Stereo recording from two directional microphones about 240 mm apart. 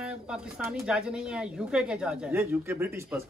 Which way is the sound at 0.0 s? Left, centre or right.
Centre.